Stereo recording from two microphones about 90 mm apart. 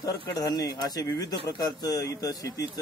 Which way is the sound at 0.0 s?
45° left (ahead or behind).